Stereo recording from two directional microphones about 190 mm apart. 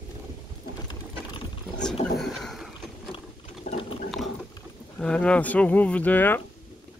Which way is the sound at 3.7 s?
35° left (ahead or behind).